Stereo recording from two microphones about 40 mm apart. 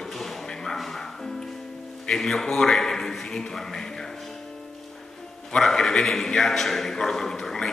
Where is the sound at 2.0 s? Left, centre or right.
Centre.